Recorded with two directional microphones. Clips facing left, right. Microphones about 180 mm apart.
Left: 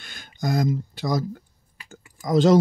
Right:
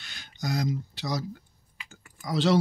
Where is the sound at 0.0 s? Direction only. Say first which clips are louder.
Left 6 dB; 50° left (ahead or behind).